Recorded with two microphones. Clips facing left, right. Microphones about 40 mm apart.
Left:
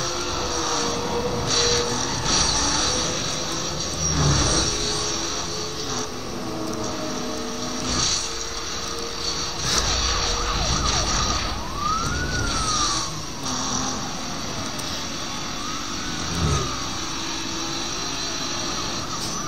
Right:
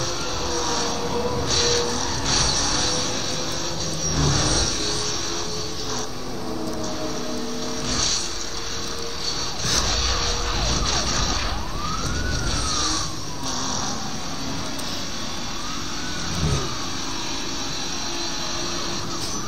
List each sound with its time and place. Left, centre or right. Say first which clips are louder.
0.6 s vehicle: even; left
4.2 s vehicle: left 1 dB; left
10.1 s vehicle: left 1 dB; left
13.7 s vehicle: left 2 dB; left